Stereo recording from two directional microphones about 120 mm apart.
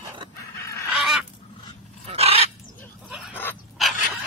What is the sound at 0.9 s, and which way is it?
Fowl, 5° right (ahead or behind).